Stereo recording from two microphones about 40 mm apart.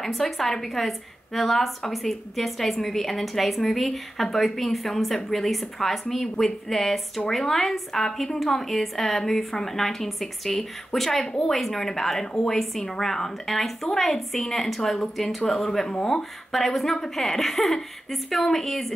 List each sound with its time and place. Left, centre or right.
0.0 s a woman's voice: centre